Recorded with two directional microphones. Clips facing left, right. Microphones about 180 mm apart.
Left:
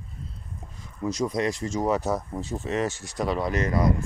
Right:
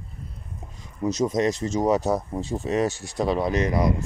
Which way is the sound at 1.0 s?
20° right (ahead or behind).